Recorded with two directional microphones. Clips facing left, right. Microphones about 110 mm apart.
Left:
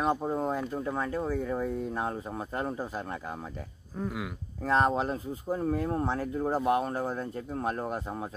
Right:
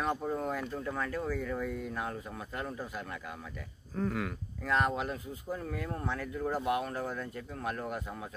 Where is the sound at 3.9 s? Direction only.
10° left (ahead or behind).